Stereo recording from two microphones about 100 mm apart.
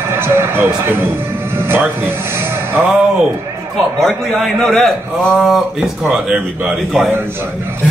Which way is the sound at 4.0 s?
5° left (ahead or behind).